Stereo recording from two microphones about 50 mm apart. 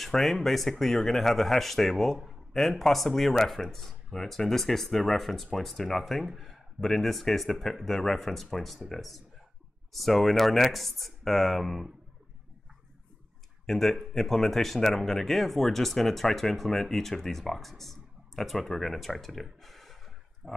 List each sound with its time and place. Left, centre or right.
0.0 s speech: centre
13.7 s speech: centre
19.6 s a sound: centre
20.4 s speech: right